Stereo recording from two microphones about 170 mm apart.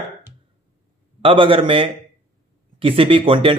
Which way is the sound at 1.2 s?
30° right (ahead or behind).